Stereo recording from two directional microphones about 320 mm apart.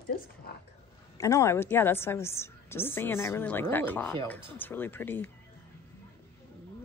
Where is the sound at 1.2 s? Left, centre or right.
Centre.